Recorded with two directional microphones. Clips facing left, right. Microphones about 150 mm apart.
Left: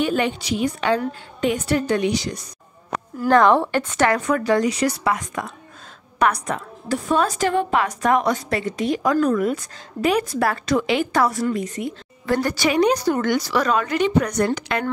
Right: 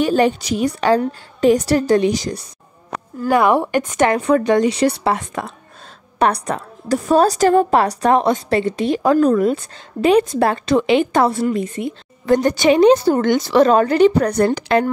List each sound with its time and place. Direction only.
0.0 s a woman's voice: 40° right (ahead or behind)
3.3 s a woman's voice: 10° right (ahead or behind); by 14.9 s 30° right (ahead or behind)